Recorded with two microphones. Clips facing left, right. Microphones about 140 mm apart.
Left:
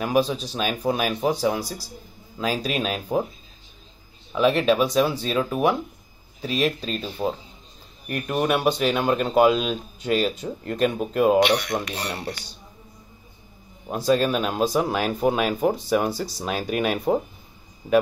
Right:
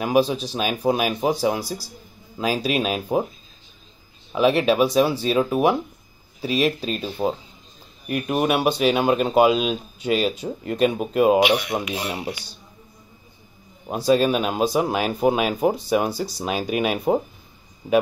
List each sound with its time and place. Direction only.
0.0 s speech: 5° right (ahead or behind)
4.4 s speech: 5° right (ahead or behind)
13.8 s speech: 5° right (ahead or behind)